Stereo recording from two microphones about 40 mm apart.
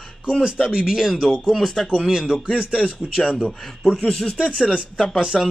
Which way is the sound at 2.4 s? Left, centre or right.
Left.